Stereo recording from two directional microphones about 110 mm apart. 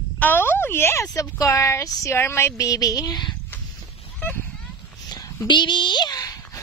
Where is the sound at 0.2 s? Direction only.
20° left (ahead or behind); by 3.3 s 40° left (ahead or behind).